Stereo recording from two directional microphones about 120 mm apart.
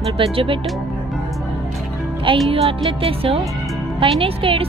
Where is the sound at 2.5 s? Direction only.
50° right (ahead or behind).